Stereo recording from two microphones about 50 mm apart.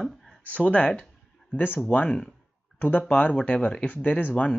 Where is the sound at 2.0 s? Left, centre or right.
Centre; by 4.4 s left.